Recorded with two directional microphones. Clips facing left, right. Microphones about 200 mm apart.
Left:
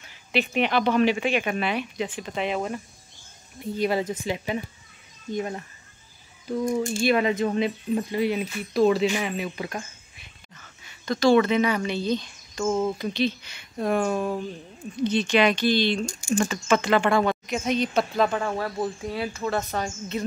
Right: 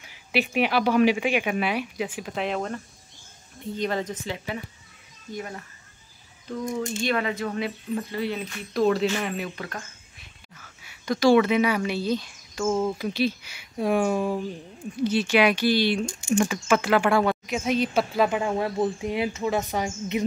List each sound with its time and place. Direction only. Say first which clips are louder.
0.0 s speech: even; 10° right (ahead or behind); by 5.7 s 25° left (ahead or behind)
7.0 s speech: left 6 dB; 15° left (ahead or behind)
8.7 s speech: left 2 dB; centre (ahead or behind)
9.6 s speech: left 3 dB; 15° left (ahead or behind)
10.1 s speech: even; 5° right (ahead or behind)